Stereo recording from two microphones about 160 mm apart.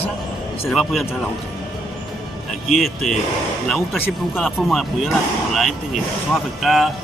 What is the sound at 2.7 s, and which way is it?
Speech, centre (ahead or behind).